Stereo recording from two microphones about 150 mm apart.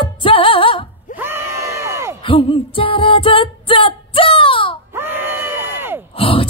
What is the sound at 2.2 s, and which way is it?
Music, 35° left (ahead or behind).